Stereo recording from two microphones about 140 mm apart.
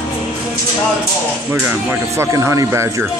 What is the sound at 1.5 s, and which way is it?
Speech, 15° right (ahead or behind).